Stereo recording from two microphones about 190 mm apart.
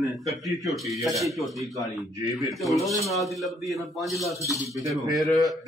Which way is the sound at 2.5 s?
Centre (ahead or behind).